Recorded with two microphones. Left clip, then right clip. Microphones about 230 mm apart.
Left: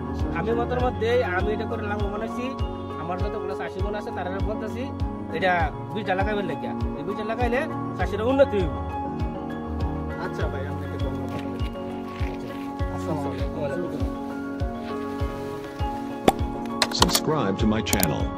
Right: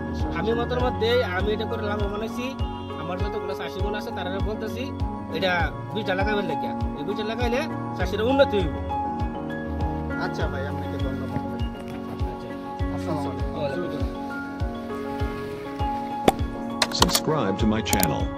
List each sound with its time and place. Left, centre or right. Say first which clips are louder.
0.4 s speech: even; centre
5.4 s speech: left 2 dB; centre
16.3 s music: left 1 dB; centre
16.8 s speech: even; centre